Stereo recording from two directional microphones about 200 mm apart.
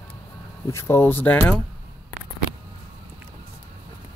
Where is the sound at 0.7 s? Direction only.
10° left (ahead or behind).